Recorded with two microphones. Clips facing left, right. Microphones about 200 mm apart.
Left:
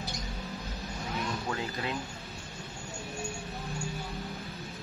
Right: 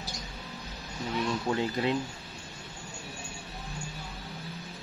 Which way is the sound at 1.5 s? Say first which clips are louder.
Right 6 dB; 25° right (ahead or behind).